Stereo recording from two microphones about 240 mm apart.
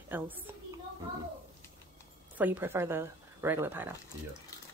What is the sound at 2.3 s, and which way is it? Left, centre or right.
Speech, centre.